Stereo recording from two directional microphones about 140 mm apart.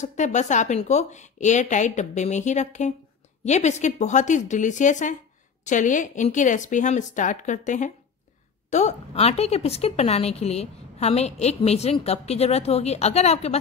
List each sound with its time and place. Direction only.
0.0 s speech: 60° left (ahead or behind)
8.6 s a woman's voice: 55° left (ahead or behind)